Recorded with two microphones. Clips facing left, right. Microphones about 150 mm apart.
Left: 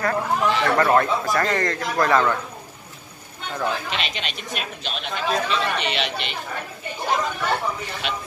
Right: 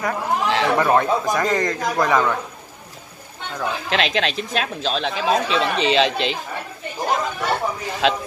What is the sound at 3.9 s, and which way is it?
Speech, 90° right.